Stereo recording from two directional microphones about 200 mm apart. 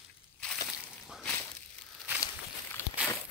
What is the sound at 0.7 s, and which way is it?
Slosh, centre (ahead or behind).